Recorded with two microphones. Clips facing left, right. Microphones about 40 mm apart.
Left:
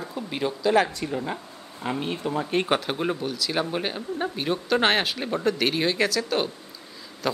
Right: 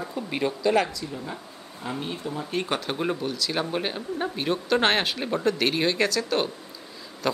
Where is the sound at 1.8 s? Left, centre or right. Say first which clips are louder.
Left 4 dB; left.